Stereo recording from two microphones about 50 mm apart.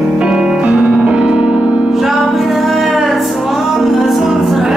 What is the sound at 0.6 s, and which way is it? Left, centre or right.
Music, right.